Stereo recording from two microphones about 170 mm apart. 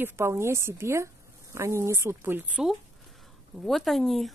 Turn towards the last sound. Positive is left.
turn(degrees=0)  # may be behind; listen again after turning